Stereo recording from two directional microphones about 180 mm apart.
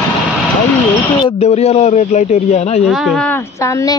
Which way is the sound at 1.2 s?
35° left (ahead or behind).